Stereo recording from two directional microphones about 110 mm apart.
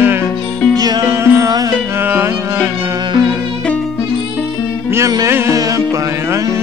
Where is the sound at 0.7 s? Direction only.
35° right (ahead or behind).